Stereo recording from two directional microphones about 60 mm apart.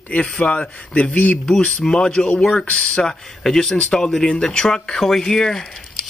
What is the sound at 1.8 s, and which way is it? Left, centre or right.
A man's voice, centre.